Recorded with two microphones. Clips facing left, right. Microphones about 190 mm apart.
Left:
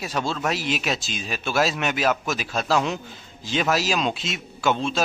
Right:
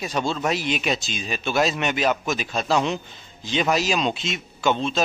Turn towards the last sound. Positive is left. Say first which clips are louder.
# right 1 dB
turn(degrees=5)  # may be behind; listen again after turning